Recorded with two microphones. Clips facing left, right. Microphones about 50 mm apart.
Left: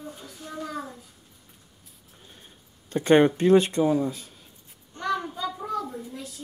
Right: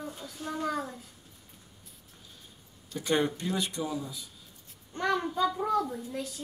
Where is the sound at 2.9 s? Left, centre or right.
Left.